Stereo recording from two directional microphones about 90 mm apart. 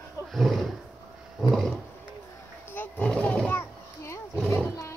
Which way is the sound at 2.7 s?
20° left (ahead or behind).